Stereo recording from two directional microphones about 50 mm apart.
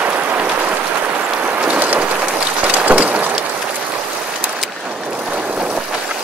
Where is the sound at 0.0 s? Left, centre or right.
Right.